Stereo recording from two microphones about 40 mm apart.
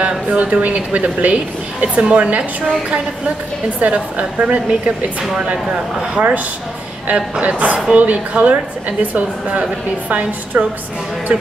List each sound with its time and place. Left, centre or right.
0.3 s a woman's voice: right
3.8 s a woman's voice: right